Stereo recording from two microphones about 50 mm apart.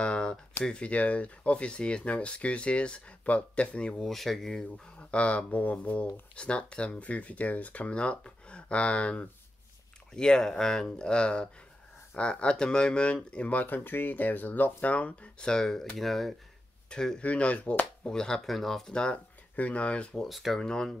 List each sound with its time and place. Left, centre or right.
0.0 s a sound: centre
0.7 s speech: left
4.0 s speech: centre
5.1 s speech: left
15.3 s speech: centre
17.2 s speech: left
18.0 s speech: centre
19.5 s speech: left
20.2 s speech: centre
20.5 s speech: centre